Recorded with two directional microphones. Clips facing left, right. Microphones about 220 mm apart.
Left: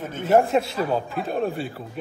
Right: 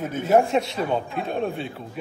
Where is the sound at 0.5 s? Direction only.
Centre (ahead or behind).